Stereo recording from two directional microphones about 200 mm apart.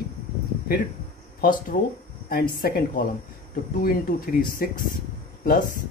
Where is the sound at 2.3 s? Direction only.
45° left (ahead or behind).